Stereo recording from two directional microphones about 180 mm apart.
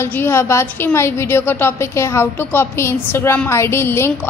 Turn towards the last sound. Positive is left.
turn(degrees=15)  # may be behind; listen again after turning